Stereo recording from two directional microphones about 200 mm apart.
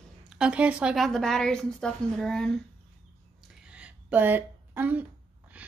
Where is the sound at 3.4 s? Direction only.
5° right (ahead or behind).